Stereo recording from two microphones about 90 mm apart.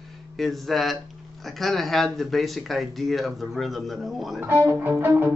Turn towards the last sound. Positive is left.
turn(degrees=-25)  # may be behind; listen again after turning